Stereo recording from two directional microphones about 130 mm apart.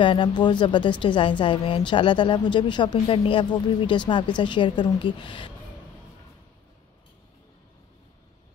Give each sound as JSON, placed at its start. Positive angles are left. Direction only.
{"t": 0.0, "sound": "a woman's voice", "side_deg": 40}